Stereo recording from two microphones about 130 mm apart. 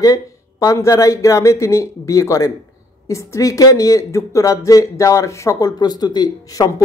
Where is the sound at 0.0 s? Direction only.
25° left (ahead or behind).